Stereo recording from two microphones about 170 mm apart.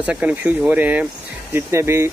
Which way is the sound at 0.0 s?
10° right (ahead or behind).